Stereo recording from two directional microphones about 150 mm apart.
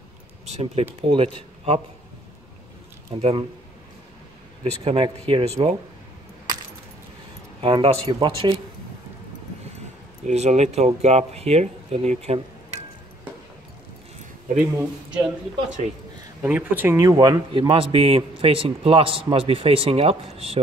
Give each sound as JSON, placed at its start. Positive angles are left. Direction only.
{"t": 0.5, "sound": "a man's voice", "side_deg": -40}
{"t": 3.2, "sound": "a man's voice", "side_deg": -40}
{"t": 4.8, "sound": "a man's voice", "side_deg": -35}
{"t": 7.6, "sound": "a man's voice", "side_deg": -35}
{"t": 10.2, "sound": "speech", "side_deg": -50}
{"t": 14.8, "sound": "a man's voice", "side_deg": -5}
{"t": 16.4, "sound": "a man's voice", "side_deg": -10}